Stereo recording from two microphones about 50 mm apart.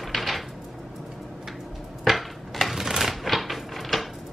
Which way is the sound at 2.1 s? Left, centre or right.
Centre.